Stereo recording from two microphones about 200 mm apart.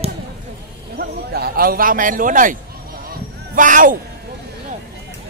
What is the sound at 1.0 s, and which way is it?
A man's voice, 50° right (ahead or behind).